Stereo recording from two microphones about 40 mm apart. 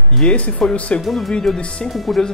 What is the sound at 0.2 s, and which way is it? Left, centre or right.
Speech, left.